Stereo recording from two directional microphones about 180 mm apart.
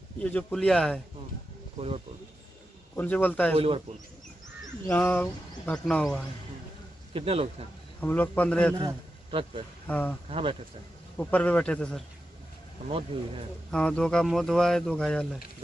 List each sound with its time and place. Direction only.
0.2 s speech: 10° left (ahead or behind)
3.0 s speech: 10° left (ahead or behind)
3.5 s a man's voice: 30° right (ahead or behind)
4.8 s speech: 10° left (ahead or behind)
7.2 s a man's voice: 30° right (ahead or behind)
8.0 s speech: 10° left (ahead or behind)
9.3 s speech: 30° right (ahead or behind)
9.8 s speech: 10° left (ahead or behind)
10.3 s a man's voice: 30° right (ahead or behind)
11.1 s speech: 10° left (ahead or behind)
13.1 s a man's voice: 30° right (ahead or behind)
13.7 s speech: 5° left (ahead or behind)